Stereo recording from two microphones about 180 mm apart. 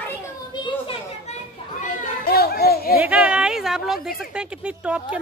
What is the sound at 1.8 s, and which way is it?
Children playing, 60° left (ahead or behind).